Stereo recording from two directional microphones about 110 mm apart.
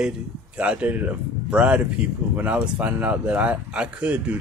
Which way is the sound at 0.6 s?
15° right (ahead or behind).